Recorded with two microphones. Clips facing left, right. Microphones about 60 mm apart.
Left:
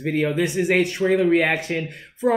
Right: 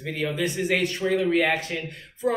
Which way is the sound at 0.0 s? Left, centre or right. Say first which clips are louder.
Left 6 dB; left.